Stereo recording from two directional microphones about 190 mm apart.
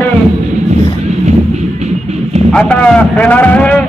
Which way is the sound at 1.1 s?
35° right (ahead or behind).